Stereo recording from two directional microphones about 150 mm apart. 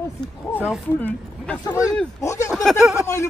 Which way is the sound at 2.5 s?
Centre (ahead or behind).